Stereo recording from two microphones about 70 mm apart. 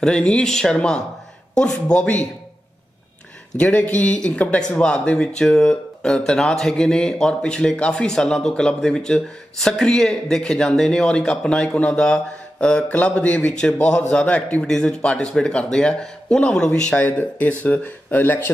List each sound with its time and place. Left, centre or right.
0.0 s speech: centre
3.5 s speech: centre
17.0 s speech: left